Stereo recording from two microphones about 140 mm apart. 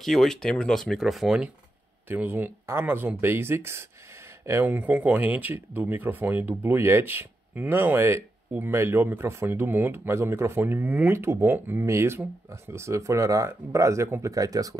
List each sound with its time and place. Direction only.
0.0 s speech: centre (ahead or behind); by 14.8 s 25° right (ahead or behind)